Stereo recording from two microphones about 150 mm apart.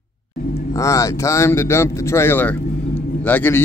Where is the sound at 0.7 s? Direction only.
20° left (ahead or behind).